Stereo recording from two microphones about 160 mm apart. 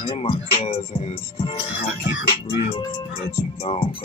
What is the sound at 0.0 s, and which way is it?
Speech, 35° left (ahead or behind).